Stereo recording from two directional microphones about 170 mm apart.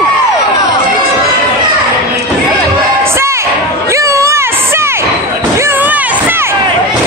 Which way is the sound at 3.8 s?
15° right (ahead or behind).